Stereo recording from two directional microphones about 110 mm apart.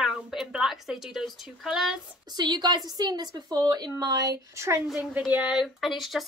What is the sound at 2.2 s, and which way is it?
A woman's voice, 40° right (ahead or behind).